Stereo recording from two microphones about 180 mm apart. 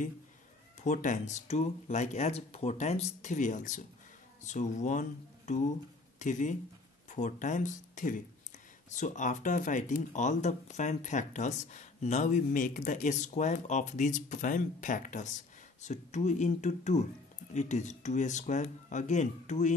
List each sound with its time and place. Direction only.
0.8 s speech: 45° left (ahead or behind)